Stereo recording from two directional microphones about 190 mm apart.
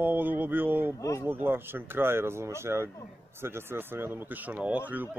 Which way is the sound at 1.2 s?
10° right (ahead or behind).